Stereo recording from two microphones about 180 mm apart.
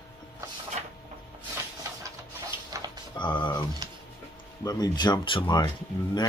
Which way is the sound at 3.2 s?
25° left (ahead or behind).